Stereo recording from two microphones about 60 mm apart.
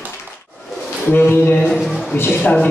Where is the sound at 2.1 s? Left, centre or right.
Left.